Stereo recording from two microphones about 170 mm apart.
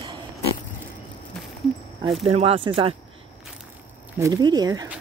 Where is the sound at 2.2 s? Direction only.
35° right (ahead or behind).